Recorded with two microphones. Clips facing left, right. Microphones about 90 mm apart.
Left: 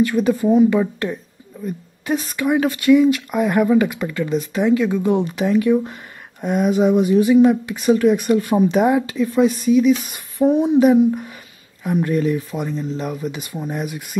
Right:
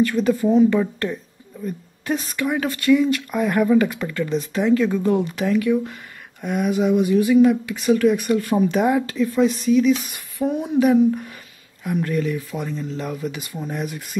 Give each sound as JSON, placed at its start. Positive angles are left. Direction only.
{"t": 0.0, "sound": "speech", "side_deg": 15}
{"t": 5.1, "sound": "speech", "side_deg": 20}
{"t": 10.1, "sound": "speech", "side_deg": 25}
{"t": 12.5, "sound": "speech", "side_deg": 20}